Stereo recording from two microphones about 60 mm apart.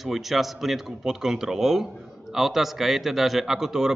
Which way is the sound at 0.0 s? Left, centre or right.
Centre.